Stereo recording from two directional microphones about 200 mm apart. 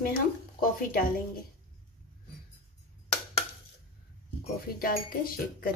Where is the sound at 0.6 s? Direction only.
45° left (ahead or behind).